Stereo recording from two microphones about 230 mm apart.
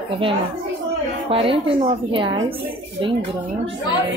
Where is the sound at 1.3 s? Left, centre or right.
Right.